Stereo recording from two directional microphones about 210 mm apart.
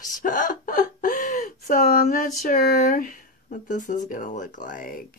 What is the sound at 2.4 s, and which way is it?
Speech, 40° left (ahead or behind).